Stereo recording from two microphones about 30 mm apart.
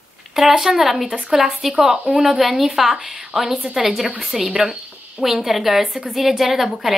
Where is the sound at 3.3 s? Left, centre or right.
Right.